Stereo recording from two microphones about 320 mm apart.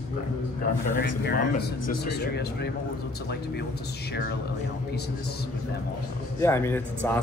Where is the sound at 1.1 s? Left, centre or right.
Left.